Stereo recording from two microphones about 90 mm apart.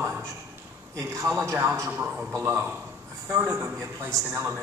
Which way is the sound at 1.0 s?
30° right (ahead or behind).